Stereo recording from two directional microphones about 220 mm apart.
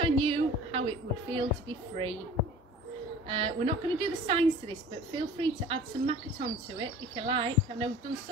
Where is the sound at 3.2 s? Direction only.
25° right (ahead or behind).